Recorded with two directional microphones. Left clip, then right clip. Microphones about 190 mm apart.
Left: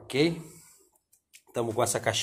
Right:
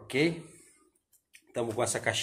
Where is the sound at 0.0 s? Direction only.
20° left (ahead or behind).